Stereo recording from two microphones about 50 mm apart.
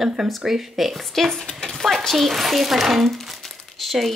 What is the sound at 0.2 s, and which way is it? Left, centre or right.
Speech, centre.